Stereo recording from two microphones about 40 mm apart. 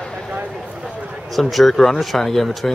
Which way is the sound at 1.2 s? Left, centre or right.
Centre.